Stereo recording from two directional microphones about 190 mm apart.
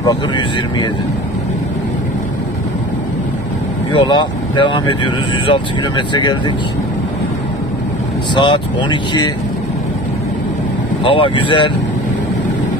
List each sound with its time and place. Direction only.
3.9 s speech: 25° left (ahead or behind)
8.4 s speech: 25° left (ahead or behind)
11.1 s speech: 25° left (ahead or behind)